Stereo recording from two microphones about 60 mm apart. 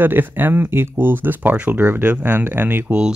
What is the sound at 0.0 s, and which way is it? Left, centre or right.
Speech, right.